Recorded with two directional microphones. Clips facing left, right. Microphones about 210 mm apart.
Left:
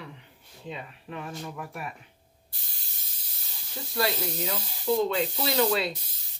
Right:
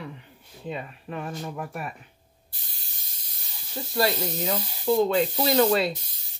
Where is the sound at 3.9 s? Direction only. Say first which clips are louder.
Right 4 dB; 40° right (ahead or behind).